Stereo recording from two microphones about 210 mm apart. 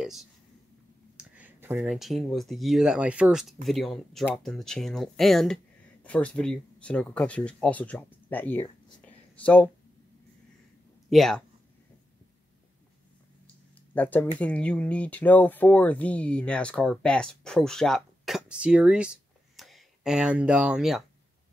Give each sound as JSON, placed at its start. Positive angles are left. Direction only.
{"t": 0.0, "sound": "a sound", "side_deg": 0}
{"t": 1.1, "sound": "speech", "side_deg": -5}
{"t": 11.1, "sound": "speech", "side_deg": 0}
{"t": 13.9, "sound": "speech", "side_deg": 5}